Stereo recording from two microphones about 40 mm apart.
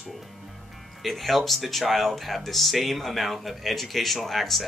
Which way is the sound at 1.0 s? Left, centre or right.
Centre.